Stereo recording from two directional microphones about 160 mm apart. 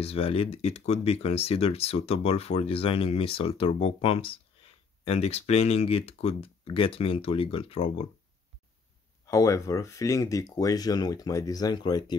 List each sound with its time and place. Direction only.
0.0 s speech: 35° left (ahead or behind)
9.2 s speech: 20° left (ahead or behind)